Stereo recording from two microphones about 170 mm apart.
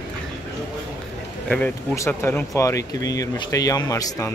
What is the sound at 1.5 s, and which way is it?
Speech, 10° left (ahead or behind).